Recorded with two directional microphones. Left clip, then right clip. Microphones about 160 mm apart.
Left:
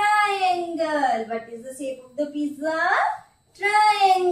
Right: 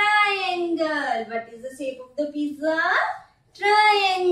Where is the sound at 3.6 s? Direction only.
20° right (ahead or behind).